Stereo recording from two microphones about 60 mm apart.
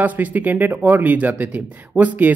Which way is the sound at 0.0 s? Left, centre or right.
Right.